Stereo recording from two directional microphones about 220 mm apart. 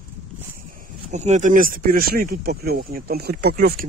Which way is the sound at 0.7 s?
30° right (ahead or behind).